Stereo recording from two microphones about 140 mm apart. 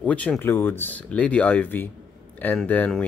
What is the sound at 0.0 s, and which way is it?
Speech, 10° left (ahead or behind).